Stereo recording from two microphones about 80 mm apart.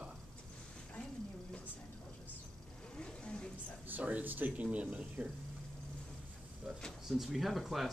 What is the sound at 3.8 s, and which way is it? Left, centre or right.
Speech, right.